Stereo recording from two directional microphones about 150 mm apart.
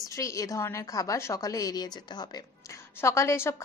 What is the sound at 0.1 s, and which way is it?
A woman's voice, 20° left (ahead or behind).